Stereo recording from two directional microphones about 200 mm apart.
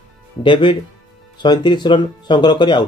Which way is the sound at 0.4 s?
25° left (ahead or behind).